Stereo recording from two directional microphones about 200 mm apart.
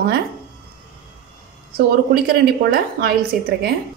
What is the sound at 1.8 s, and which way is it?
A woman's voice, 50° right (ahead or behind).